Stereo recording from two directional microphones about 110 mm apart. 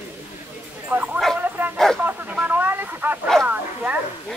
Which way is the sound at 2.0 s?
15° right (ahead or behind).